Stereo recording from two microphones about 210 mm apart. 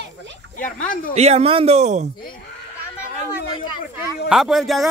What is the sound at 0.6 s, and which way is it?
Speech, 40° left (ahead or behind).